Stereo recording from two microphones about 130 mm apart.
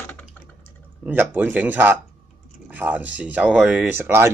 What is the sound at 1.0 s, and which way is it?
Speech, 15° right (ahead or behind).